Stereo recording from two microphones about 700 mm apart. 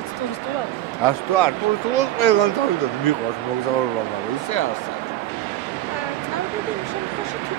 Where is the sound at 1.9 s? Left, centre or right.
Left.